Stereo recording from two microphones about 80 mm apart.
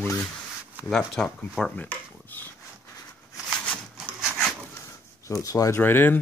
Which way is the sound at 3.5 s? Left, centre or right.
Centre.